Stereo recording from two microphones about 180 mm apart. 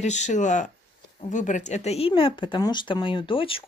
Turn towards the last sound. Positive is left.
turn(degrees=30)  # may be behind; listen again after turning